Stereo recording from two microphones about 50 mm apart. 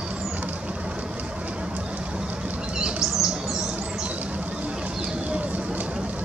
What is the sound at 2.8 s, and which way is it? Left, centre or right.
Chirp, centre.